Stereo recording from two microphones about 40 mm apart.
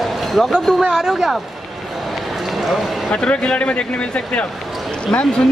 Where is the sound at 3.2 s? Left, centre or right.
Left.